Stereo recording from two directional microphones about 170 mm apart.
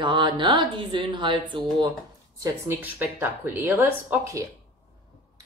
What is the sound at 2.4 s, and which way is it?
Speech, 10° right (ahead or behind).